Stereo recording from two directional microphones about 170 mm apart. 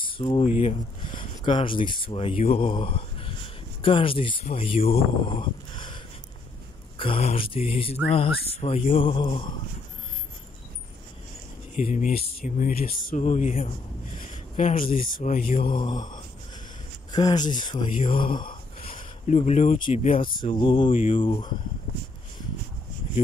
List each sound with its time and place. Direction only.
0.0 s a sound: 30° left (ahead or behind)
0.6 s speech: 30° left (ahead or behind)
7.0 s speech: 35° left (ahead or behind)
8.9 s mantra: 30° left (ahead or behind)
11.8 s speech: 50° left (ahead or behind)
13.2 s speech: 45° left (ahead or behind)
14.3 s a sound: 35° left (ahead or behind)
14.8 s speech: 55° left (ahead or behind)
15.8 s mantra: 25° left (ahead or behind)
18.5 s a sound: 30° left (ahead or behind)
19.9 s speech: 40° left (ahead or behind)
20.2 s speech: 55° left (ahead or behind)
20.4 s speech: 30° left (ahead or behind)